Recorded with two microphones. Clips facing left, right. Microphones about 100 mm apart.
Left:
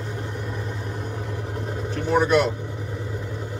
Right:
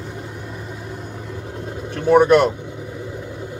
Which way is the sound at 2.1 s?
55° right (ahead or behind).